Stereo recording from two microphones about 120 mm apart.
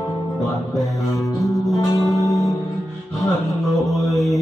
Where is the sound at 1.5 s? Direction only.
30° left (ahead or behind).